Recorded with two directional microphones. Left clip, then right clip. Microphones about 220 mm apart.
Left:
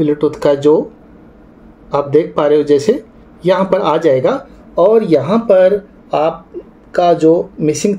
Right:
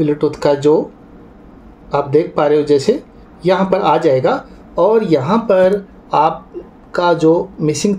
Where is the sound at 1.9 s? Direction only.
5° right (ahead or behind).